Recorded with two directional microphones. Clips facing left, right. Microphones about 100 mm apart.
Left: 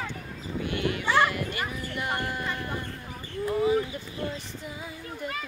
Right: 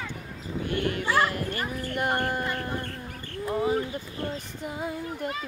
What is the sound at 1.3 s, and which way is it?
Fowl, 40° right (ahead or behind).